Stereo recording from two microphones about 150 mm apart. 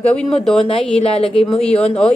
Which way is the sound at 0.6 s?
40° left (ahead or behind).